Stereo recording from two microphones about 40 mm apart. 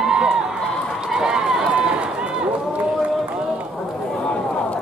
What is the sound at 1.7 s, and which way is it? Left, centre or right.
Run, right.